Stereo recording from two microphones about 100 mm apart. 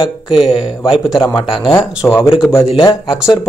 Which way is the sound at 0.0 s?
60° left (ahead or behind).